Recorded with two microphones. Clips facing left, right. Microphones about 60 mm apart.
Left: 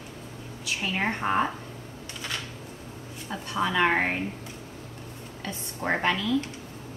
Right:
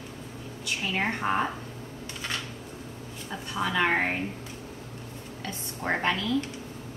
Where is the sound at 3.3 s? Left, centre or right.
Centre.